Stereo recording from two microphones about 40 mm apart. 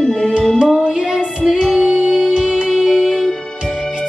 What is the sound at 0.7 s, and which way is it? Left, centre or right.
Child singing, centre.